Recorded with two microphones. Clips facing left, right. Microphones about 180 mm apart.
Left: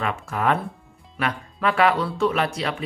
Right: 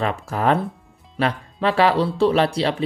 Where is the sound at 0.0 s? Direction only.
35° right (ahead or behind).